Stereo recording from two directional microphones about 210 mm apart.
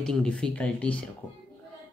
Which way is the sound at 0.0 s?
5° left (ahead or behind).